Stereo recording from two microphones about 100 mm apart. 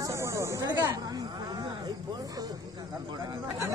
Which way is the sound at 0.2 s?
30° right (ahead or behind).